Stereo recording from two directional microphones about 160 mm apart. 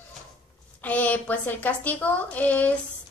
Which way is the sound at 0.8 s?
10° left (ahead or behind).